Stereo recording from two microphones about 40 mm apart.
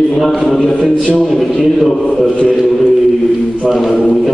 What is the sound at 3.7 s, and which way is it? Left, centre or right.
Speech, centre.